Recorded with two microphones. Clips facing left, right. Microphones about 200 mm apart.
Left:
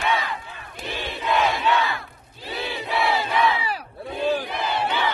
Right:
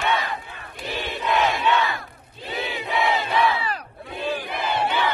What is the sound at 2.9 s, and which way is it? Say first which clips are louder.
Crowd: even; 20° right (ahead or behind).